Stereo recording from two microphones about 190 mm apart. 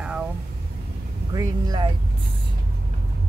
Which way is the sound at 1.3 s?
20° right (ahead or behind).